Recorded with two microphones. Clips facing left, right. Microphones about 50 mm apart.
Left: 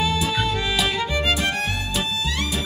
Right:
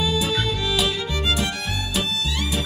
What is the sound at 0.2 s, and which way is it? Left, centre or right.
Music, centre.